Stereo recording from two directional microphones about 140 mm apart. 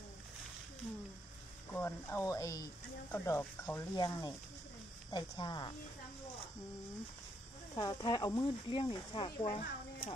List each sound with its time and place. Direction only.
1.7 s speech: 15° left (ahead or behind)
3.9 s speech: 30° left (ahead or behind)
7.7 s speech: 25° left (ahead or behind)
8.6 s speech: 40° left (ahead or behind)
9.6 s a sound: 70° left (ahead or behind)